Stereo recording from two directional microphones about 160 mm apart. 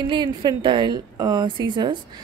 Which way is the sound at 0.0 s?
30° right (ahead or behind).